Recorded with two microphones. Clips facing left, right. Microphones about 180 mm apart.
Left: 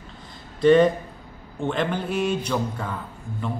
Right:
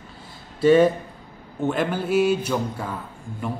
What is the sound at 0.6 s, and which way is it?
A man's voice, 5° right (ahead or behind).